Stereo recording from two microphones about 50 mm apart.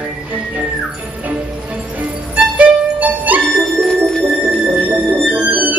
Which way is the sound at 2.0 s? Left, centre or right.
Right.